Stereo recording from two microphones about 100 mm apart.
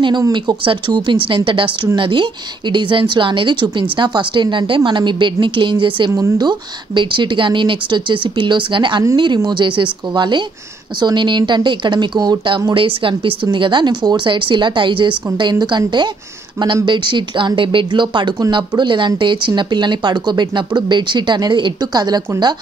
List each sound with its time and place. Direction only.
0.3 s a woman's voice: 50° right (ahead or behind)
6.1 s speech: 40° right (ahead or behind)